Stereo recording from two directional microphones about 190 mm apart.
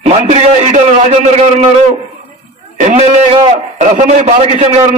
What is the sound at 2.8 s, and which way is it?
A man's voice, 30° right (ahead or behind).